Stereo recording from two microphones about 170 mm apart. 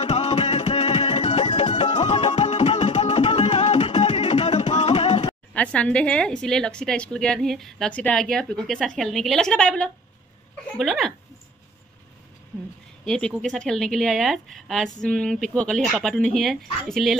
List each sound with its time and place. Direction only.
0.0 s music: 40° left (ahead or behind)
5.5 s a woman's voice: 5° left (ahead or behind)
13.0 s a woman's voice: 5° left (ahead or behind)